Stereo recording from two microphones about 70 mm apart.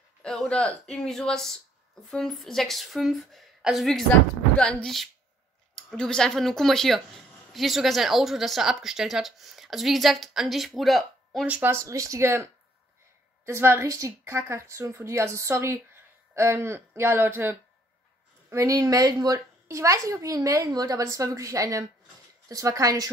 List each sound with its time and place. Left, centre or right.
0.5 s speech: centre
11.6 s a woman's voice: right
13.5 s a woman's voice: right
18.5 s a woman's voice: right